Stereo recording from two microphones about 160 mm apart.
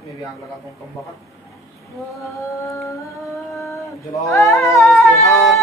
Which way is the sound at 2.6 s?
20° left (ahead or behind).